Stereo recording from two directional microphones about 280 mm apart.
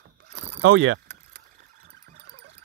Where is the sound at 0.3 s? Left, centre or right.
Right.